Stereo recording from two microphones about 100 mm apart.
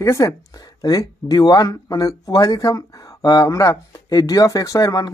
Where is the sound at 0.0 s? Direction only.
30° left (ahead or behind).